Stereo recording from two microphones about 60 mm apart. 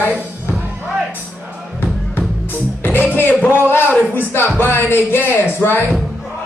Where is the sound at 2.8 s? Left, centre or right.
Left.